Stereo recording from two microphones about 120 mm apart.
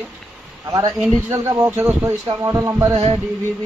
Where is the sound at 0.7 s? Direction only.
30° right (ahead or behind).